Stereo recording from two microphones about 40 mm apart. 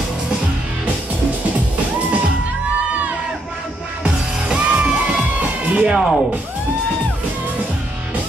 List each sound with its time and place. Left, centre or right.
4.0 s music: right
5.9 s speech: centre